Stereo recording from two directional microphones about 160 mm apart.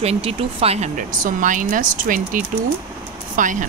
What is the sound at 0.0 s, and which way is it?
Speech, 40° right (ahead or behind).